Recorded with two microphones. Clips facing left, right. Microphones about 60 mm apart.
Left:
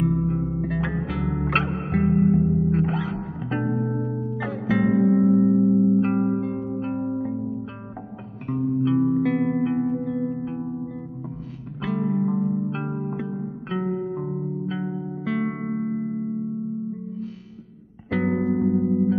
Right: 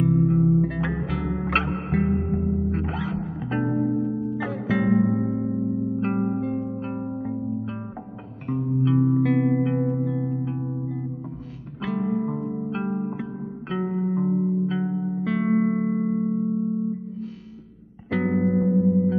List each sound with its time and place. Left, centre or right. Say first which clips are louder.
0.0 s music: right 3 dB; centre
5.2 s music: left 8 dB; centre
5.9 s music: left 3 dB; centre
11.8 s music: left 1 dB; centre
15.8 s music: right 3 dB; right
18.1 s music: even; centre